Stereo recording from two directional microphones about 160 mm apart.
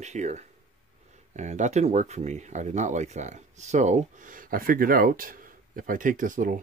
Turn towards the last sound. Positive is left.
turn(degrees=-55)  # may be behind; listen again after turning